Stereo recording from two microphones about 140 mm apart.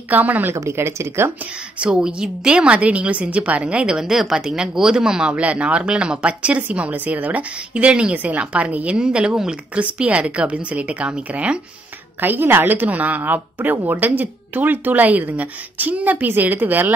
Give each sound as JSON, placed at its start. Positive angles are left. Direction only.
{"t": 0.1, "sound": "a woman's voice", "side_deg": -10}
{"t": 1.8, "sound": "a woman's voice", "side_deg": -5}